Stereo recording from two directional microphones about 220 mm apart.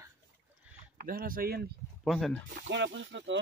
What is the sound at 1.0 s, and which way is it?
Speech, 40° right (ahead or behind).